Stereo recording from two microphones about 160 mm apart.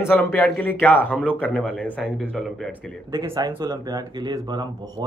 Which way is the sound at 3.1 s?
25° right (ahead or behind).